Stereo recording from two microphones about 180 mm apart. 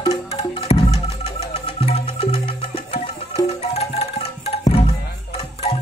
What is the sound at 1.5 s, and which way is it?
Music, 35° left (ahead or behind).